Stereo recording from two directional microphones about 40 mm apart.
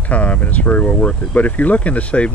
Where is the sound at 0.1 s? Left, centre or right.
Left.